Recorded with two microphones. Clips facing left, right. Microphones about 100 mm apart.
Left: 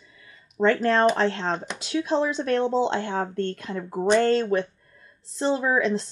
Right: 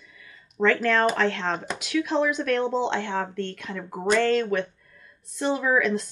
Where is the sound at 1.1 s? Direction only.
35° left (ahead or behind).